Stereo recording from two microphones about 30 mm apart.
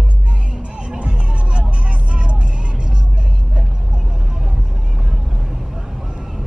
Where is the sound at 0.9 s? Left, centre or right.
Right.